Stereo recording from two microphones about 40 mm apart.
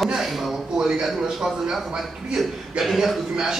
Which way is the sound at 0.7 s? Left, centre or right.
Centre.